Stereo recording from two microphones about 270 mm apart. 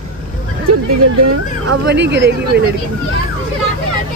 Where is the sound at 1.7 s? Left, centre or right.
Right.